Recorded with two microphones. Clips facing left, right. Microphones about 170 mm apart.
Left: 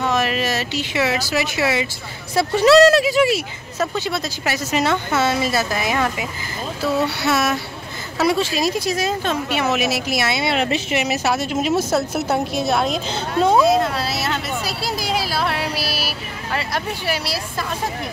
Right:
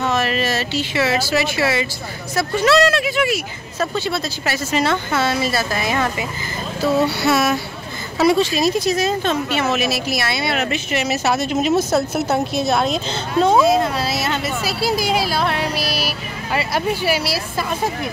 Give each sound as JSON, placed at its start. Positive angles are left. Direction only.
{"t": 0.0, "sound": "speech", "side_deg": 15}
{"t": 2.3, "sound": "speech", "side_deg": 35}
{"t": 3.8, "sound": "speech", "side_deg": 15}
{"t": 7.2, "sound": "speech", "side_deg": 0}
{"t": 11.0, "sound": "speech", "side_deg": 10}
{"t": 13.6, "sound": "speech", "side_deg": 0}
{"t": 16.5, "sound": "speech", "side_deg": -5}